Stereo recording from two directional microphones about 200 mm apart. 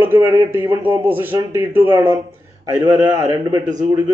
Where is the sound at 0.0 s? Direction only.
10° right (ahead or behind).